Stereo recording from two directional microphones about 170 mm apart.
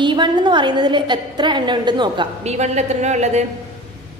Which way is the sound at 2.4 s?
40° right (ahead or behind).